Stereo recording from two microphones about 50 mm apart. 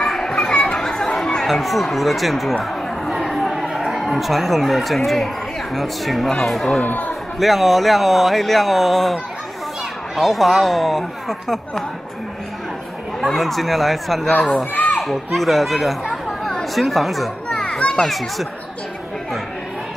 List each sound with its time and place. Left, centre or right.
0.0 s chatter: centre
3.2 s a sound: centre
5.8 s speech: centre
6.8 s speech: left
7.3 s speech: centre
13.2 s speech: centre
17.5 s children playing: centre
18.0 s speech: centre